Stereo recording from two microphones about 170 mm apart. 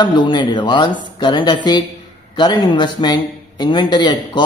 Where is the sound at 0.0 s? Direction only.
25° left (ahead or behind).